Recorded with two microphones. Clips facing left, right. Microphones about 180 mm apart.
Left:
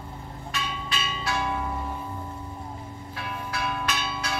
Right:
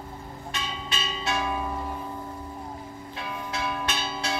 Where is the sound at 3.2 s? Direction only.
20° right (ahead or behind).